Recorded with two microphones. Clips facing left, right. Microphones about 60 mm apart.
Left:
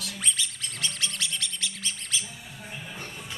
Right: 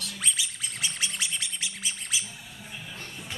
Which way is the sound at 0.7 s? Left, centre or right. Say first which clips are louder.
Left 1 dB; centre.